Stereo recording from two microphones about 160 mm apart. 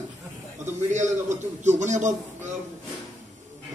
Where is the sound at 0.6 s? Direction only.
45° right (ahead or behind).